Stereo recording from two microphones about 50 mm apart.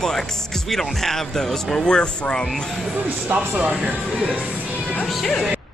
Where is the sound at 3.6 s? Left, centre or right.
Centre.